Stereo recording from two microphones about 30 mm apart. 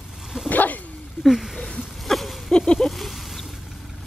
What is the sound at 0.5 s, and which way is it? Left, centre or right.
Bow-wow, left.